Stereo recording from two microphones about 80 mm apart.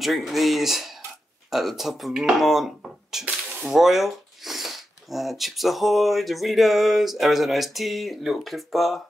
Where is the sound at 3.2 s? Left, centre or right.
Centre.